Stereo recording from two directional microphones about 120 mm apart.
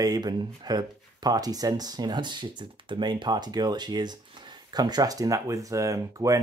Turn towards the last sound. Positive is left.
turn(degrees=-25)  # may be behind; listen again after turning